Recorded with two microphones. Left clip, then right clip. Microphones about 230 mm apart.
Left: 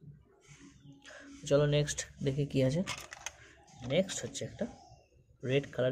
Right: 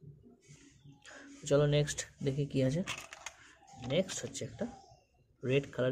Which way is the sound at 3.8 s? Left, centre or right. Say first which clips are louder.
Left 2 dB; centre.